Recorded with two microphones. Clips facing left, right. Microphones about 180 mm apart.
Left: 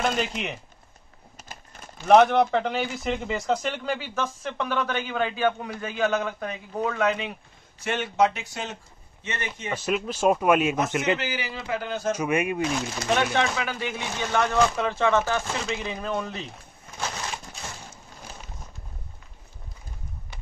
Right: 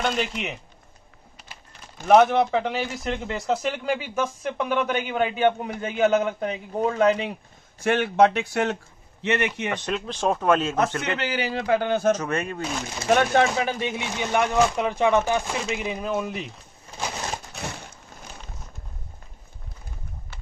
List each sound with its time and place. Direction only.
0.0 s speech: centre (ahead or behind)
2.0 s speech: 5° right (ahead or behind); by 7.3 s 35° right (ahead or behind)
7.8 s a man's voice: 55° right (ahead or behind)
9.8 s speech: 5° left (ahead or behind)
11.1 s speech: 65° right (ahead or behind)
12.1 s speech: 10° left (ahead or behind)
13.1 s speech: 45° right (ahead or behind)
13.6 s speech: 25° right (ahead or behind); by 16.4 s 10° right (ahead or behind)